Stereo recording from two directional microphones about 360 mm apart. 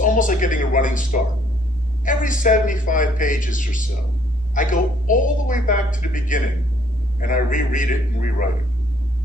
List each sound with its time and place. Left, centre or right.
0.0 s a woman's voice: left